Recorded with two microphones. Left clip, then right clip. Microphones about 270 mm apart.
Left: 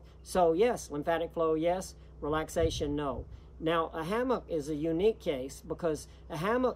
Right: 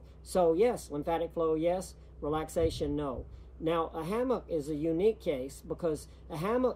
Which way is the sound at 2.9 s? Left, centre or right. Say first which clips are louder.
Left 1 dB; centre.